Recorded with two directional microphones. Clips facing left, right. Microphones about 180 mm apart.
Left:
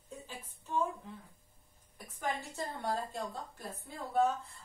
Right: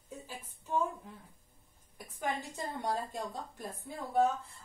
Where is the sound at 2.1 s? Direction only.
15° right (ahead or behind).